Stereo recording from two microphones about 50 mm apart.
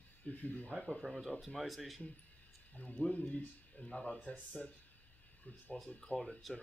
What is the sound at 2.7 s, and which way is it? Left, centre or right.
Speech, left.